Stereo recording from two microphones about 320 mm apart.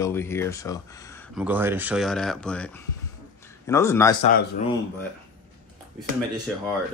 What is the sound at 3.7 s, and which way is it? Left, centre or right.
Speech, centre.